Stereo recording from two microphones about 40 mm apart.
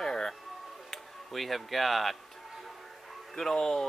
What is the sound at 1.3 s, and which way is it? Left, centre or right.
Speech, centre.